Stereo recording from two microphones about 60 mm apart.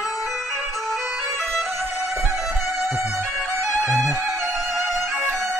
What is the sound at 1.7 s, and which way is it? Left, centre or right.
Music, right.